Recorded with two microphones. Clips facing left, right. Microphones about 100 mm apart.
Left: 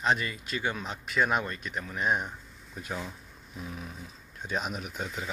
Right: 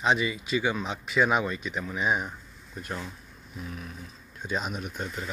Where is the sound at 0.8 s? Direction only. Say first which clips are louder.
Right 3 dB; 5° right (ahead or behind).